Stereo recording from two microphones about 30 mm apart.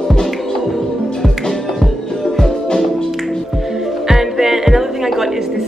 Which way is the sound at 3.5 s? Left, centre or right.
Centre.